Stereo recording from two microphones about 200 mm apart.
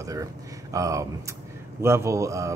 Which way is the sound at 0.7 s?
15° right (ahead or behind).